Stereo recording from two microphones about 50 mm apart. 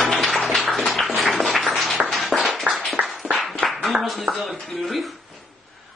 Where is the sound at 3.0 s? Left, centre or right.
Right.